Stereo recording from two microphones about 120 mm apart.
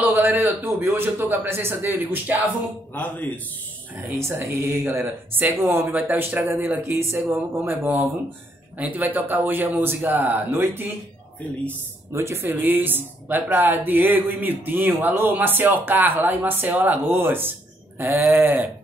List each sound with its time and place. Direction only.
0.0 s speech: 15° right (ahead or behind)
2.9 s a man's voice: 15° left (ahead or behind)
4.1 s speech: 20° right (ahead or behind)